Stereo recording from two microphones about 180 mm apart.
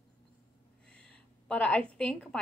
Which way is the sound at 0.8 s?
5° left (ahead or behind).